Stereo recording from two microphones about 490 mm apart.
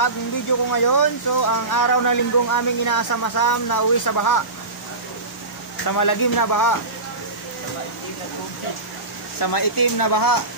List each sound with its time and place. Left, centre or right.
0.7 s speech: left
5.9 s speech: left
9.4 s speech: left